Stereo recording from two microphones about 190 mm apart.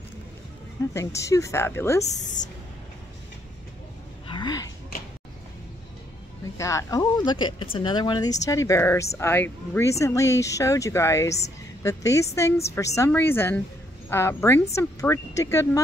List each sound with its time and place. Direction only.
0.9 s speech: 15° left (ahead or behind)
2.0 s speech: 40° left (ahead or behind)
4.3 s a sound: 20° left (ahead or behind)
6.6 s speech: 15° left (ahead or behind)